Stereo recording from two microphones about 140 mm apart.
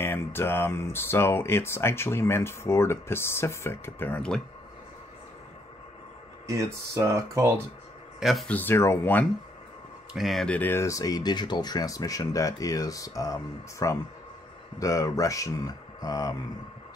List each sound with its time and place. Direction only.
0.0 s speech: 15° left (ahead or behind)
6.4 s speech: 20° right (ahead or behind)
8.2 s speech: centre (ahead or behind)
8.5 s speech: 15° left (ahead or behind)
10.1 s speech: centre (ahead or behind); by 16.3 s 25° left (ahead or behind)